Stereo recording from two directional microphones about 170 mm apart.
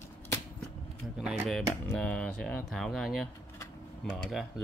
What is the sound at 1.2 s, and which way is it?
Speech, centre (ahead or behind).